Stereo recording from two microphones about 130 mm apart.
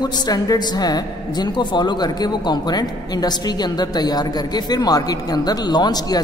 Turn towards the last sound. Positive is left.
turn(degrees=30)  # may be behind; listen again after turning